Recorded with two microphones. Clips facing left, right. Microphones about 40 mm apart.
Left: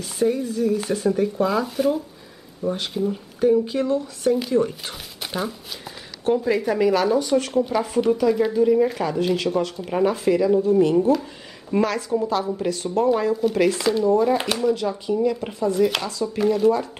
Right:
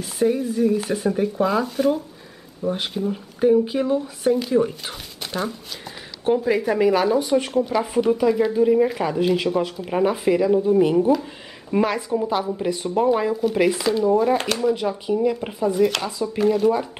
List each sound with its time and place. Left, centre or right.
0.0 s speech: centre
5.2 s speech: centre
6.2 s speech: centre
14.4 s speech: centre
14.7 s speech: centre
16.3 s speech: centre
16.7 s speech: centre